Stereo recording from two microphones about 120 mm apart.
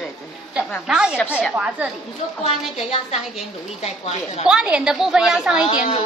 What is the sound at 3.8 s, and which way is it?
Speech, 70° left (ahead or behind).